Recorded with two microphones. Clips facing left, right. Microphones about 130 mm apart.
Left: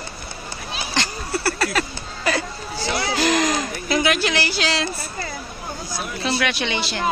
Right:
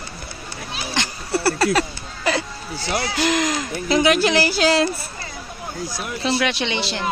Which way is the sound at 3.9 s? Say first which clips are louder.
Right 4 dB; 30° right (ahead or behind).